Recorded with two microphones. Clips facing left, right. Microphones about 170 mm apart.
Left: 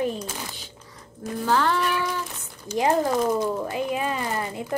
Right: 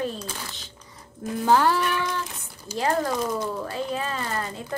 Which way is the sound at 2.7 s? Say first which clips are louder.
Left 3 dB; 20° left (ahead or behind).